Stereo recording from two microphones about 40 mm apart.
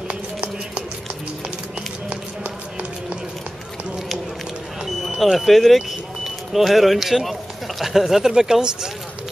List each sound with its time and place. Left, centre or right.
2.0 s run: right
4.8 s smoke detector: centre
5.4 s speech: centre